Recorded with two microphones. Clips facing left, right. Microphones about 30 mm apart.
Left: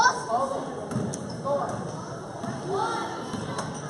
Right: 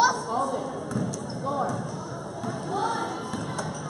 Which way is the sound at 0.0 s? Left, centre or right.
Centre.